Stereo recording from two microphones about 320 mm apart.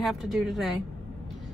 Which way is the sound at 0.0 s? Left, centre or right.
Centre.